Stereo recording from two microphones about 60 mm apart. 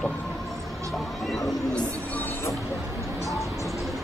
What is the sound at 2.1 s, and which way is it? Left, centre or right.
Music, left.